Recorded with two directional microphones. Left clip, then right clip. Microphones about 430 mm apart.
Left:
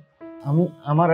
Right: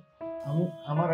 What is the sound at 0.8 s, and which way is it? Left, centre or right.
Speech, left.